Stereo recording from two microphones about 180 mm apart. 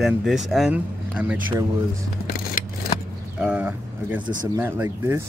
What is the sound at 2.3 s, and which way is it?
Scissors, 50° left (ahead or behind).